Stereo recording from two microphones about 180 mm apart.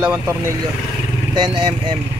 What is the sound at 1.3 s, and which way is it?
Speech, 25° right (ahead or behind).